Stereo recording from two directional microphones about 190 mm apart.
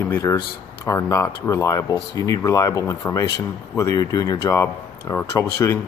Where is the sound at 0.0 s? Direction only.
15° left (ahead or behind).